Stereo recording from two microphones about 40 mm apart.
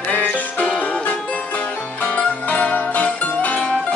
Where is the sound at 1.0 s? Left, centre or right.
Left.